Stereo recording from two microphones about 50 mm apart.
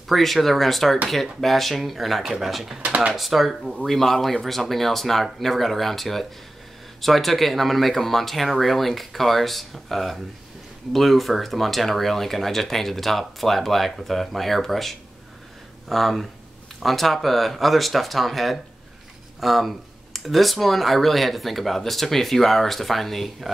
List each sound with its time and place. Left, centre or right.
0.1 s speech: centre
2.8 s speech: right
3.2 s speech: centre